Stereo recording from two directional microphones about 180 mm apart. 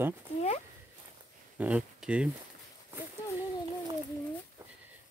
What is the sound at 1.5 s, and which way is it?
Speech, 5° right (ahead or behind).